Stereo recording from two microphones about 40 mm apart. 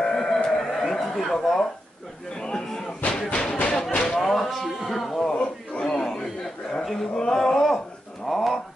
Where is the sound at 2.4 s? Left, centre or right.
Centre.